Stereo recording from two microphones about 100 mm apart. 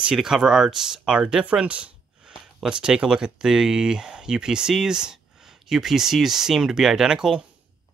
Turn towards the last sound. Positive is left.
turn(degrees=-5)  # may be behind; listen again after turning